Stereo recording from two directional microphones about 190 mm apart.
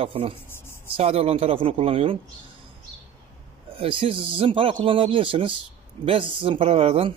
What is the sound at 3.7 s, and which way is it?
Speech, 30° right (ahead or behind).